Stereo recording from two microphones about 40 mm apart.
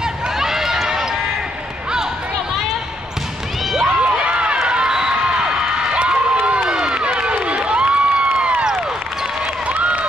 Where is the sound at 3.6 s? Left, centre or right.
Centre.